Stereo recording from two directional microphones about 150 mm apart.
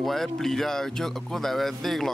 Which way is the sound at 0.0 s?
Centre (ahead or behind).